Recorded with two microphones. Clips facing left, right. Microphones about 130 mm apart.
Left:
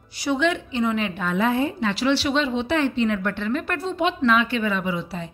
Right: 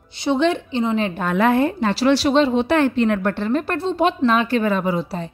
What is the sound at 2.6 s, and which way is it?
A woman's voice, 50° right (ahead or behind).